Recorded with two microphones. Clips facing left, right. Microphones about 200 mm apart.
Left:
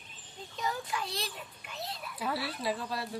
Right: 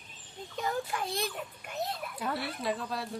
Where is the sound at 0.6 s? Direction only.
50° right (ahead or behind).